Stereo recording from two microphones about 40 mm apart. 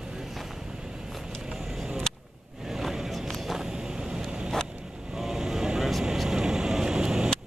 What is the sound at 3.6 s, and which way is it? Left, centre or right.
Vehicle, centre.